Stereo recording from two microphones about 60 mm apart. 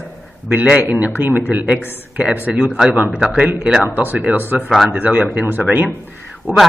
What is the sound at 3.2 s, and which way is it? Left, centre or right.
Speech, right.